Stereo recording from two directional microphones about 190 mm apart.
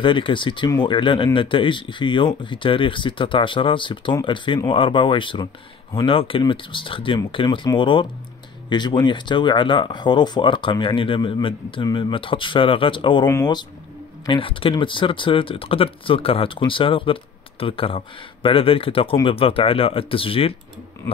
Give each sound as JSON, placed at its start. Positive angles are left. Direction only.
{"t": 0.0, "sound": "speech", "side_deg": 25}